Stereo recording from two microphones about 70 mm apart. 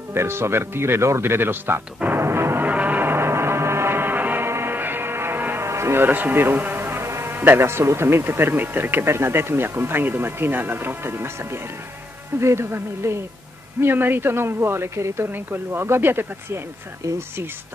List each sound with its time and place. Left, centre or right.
0.1 s speech: right
2.0 s music: right
2.6 s music: right
6.0 s speech: right
17.0 s speech: right